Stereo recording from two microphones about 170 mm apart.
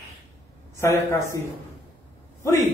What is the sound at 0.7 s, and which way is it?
Speech, 15° left (ahead or behind).